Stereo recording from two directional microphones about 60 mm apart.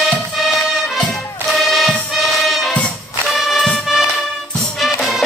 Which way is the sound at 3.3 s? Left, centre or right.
Centre.